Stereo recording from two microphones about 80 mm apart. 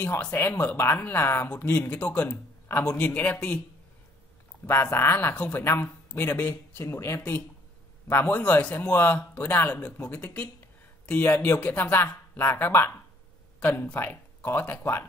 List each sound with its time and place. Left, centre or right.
0.0 s a man's voice: left
4.9 s speech: left
6.8 s speech: left
8.1 s speech: left
13.9 s speech: left